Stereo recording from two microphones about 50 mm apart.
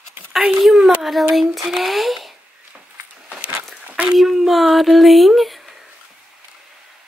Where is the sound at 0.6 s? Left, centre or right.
Centre.